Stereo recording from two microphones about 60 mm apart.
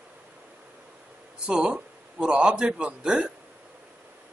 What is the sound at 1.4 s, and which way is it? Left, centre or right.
A man's voice, centre.